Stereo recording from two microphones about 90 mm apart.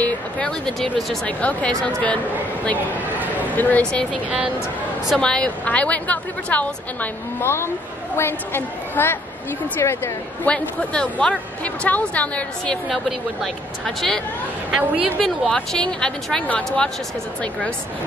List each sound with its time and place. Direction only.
0.0 s speech: 10° left (ahead or behind)
1.2 s speech: 15° left (ahead or behind)
3.5 s speech: 20° left (ahead or behind)
7.4 s a woman's voice: 30° left (ahead or behind)
10.4 s speech: 15° left (ahead or behind)
12.8 s a woman's voice: centre (ahead or behind)
15.2 s speech: 5° left (ahead or behind)